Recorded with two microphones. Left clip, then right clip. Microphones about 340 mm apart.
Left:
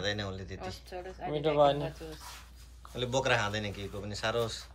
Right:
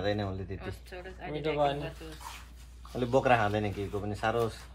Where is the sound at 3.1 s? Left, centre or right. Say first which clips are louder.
Right 4 dB; centre.